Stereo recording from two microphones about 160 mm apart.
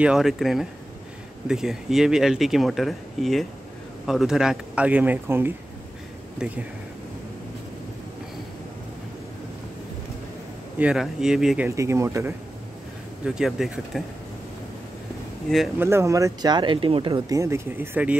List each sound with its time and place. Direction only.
0.0 s speech: 5° right (ahead or behind)
10.8 s speech: 5° right (ahead or behind)
11.7 s speech: 20° right (ahead or behind)
13.2 s speech: 5° right (ahead or behind)
15.8 s speech: 15° right (ahead or behind)
17.4 s speech: 15° right (ahead or behind)